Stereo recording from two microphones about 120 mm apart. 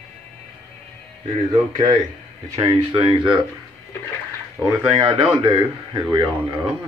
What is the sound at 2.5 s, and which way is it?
Speech, 40° right (ahead or behind).